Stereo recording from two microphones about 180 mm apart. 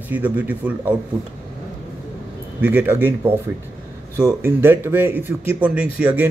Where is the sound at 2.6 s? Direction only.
10° right (ahead or behind).